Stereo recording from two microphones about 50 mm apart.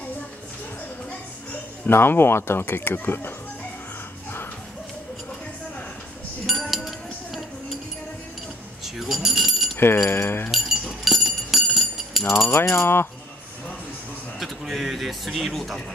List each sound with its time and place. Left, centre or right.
1.9 s speech: left
6.4 s chink: centre
8.8 s a sound: centre
10.0 s speech: left
10.5 s a sound: centre
12.4 s rattle: left
14.4 s a man's voice: centre